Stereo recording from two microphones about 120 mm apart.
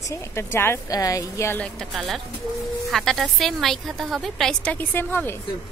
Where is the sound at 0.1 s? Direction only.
20° left (ahead or behind).